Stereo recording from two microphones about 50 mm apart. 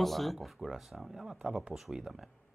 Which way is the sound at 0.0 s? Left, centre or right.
Centre.